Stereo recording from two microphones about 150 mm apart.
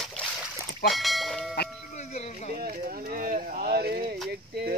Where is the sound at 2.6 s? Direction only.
70° right (ahead or behind).